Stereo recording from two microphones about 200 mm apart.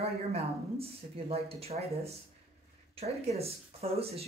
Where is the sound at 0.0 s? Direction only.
30° right (ahead or behind).